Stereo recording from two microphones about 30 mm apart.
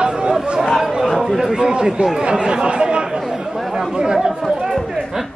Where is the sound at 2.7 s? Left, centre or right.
Right.